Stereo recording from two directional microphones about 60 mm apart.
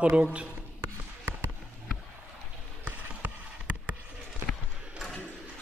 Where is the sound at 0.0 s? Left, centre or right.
Centre.